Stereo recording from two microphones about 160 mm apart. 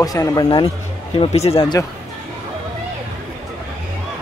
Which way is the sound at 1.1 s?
40° left (ahead or behind).